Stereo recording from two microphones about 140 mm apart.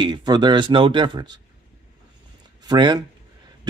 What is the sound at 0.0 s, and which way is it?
Speech, 30° right (ahead or behind).